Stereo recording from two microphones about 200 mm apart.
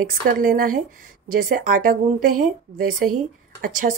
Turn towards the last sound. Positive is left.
turn(degrees=-40)  # may be behind; listen again after turning